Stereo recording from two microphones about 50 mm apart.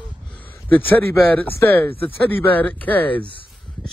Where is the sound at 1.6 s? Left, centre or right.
Left.